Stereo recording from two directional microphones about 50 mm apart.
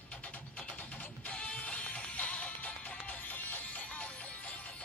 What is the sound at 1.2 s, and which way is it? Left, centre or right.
Music, left.